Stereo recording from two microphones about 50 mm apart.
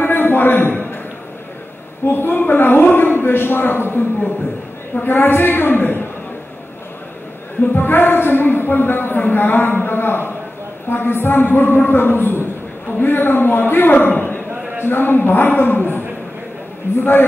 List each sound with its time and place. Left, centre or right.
0.0 s a sound: left
2.0 s a woman's voice: left
7.7 s a woman's voice: left
14.9 s a woman's voice: left
17.0 s a woman's voice: left